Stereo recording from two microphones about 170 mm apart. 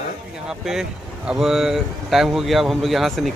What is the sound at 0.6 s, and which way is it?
Speech, 5° right (ahead or behind).